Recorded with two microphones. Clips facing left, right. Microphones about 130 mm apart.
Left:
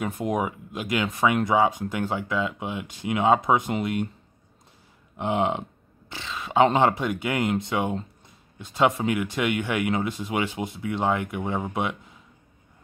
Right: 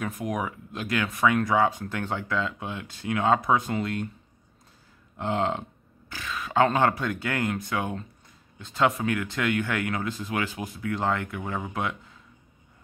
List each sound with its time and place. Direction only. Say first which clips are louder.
0.0 s speech: left 4 dB; 25° left (ahead or behind)
5.1 s speech: left 2 dB; 15° left (ahead or behind)